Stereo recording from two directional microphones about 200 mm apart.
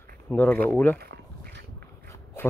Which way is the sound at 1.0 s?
50° right (ahead or behind).